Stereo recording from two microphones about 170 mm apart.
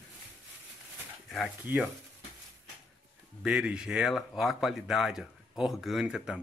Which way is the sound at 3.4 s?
5° right (ahead or behind).